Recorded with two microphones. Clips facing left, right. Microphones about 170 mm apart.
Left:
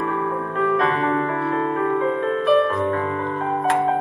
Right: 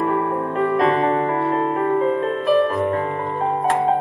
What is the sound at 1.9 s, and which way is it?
Music, 35° right (ahead or behind).